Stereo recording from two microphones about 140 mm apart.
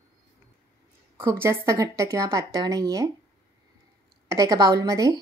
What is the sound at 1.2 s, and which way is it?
A woman's voice, 20° right (ahead or behind).